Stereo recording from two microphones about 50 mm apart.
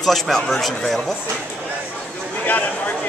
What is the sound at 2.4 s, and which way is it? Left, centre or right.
Speech, left.